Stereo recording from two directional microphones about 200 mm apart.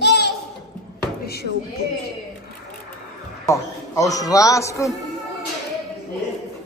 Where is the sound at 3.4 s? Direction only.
15° left (ahead or behind).